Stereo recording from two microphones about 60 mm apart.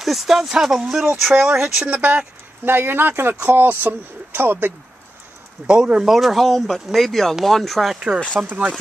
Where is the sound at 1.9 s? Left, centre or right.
Right.